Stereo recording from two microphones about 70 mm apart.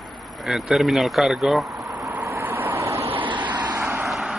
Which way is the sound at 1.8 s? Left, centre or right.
Right.